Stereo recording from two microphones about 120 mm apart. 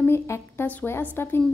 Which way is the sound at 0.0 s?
20° left (ahead or behind).